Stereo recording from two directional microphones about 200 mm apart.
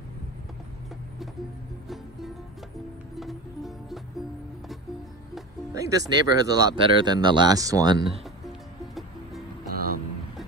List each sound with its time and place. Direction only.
3.2 s music: centre (ahead or behind)
5.7 s speech: 15° right (ahead or behind)
9.7 s music: 45° right (ahead or behind)